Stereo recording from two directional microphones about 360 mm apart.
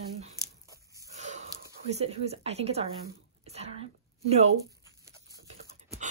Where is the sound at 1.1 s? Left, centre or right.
Centre.